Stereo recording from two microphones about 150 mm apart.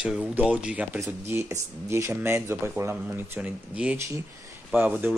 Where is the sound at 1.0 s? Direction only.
20° right (ahead or behind).